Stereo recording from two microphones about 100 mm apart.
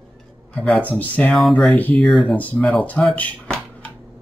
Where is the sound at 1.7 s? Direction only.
15° left (ahead or behind).